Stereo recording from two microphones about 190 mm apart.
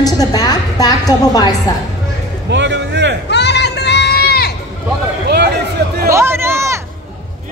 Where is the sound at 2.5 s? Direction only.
70° right (ahead or behind).